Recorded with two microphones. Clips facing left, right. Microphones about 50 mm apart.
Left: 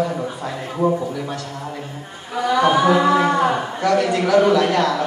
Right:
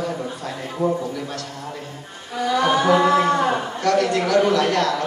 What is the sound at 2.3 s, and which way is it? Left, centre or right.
Speech, centre.